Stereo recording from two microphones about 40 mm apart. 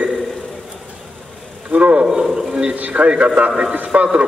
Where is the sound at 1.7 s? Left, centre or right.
Right.